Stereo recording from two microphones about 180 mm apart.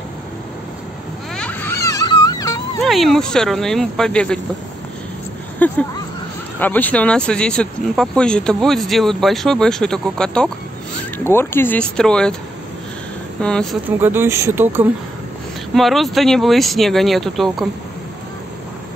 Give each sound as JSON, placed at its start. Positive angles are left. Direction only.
{"t": 1.3, "sound": "a sound", "side_deg": 10}
{"t": 2.8, "sound": "speech", "side_deg": 0}
{"t": 5.6, "sound": "speech", "side_deg": 10}
{"t": 13.4, "sound": "speech", "side_deg": 5}
{"t": 13.8, "sound": "speech", "side_deg": -10}
{"t": 15.7, "sound": "speech", "side_deg": 0}